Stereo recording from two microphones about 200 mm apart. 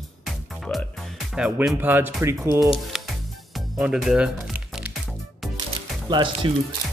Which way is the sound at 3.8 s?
5° right (ahead or behind).